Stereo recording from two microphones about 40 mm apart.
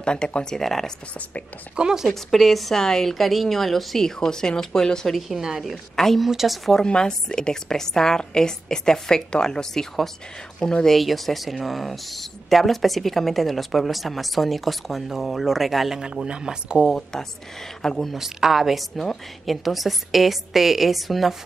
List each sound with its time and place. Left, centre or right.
0.0 s speech: left
0.6 s a woman's voice: centre
1.8 s speech: centre
2.3 s speech: centre
4.2 s a woman's voice: centre
5.4 s speech: centre
5.9 s speech: centre
6.8 s a woman's voice: centre
11.0 s speech: centre
16.0 s speech: right
16.9 s a woman's voice: centre
18.1 s speech: centre